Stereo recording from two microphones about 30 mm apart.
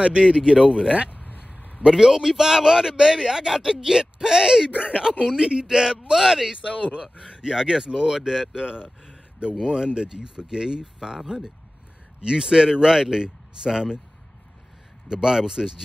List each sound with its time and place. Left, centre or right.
0.0 s speech: right
1.1 s a sound: left
1.9 s speech: right
7.0 s speech: right
8.5 s speech: right
15.0 s speech: right